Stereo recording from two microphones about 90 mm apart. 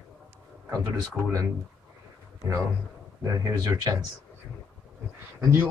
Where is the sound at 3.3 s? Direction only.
40° right (ahead or behind).